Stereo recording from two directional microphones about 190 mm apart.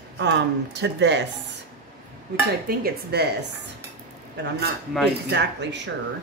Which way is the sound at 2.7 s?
55° right (ahead or behind).